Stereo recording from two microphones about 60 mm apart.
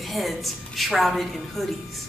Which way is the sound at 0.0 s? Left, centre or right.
Centre.